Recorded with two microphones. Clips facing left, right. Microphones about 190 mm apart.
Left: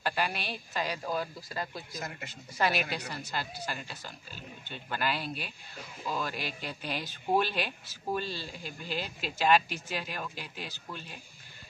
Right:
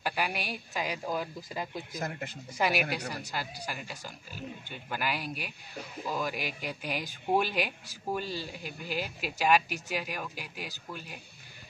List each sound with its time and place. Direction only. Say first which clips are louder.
0.0 s speech: even; 10° right (ahead or behind)
2.0 s speech: right 5 dB; 55° right (ahead or behind)
2.5 s speech: right 1 dB; 15° right (ahead or behind)